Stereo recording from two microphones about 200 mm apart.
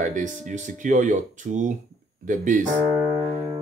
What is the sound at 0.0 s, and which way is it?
Speech, 40° right (ahead or behind).